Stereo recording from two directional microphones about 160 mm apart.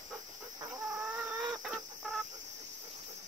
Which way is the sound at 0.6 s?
20° right (ahead or behind).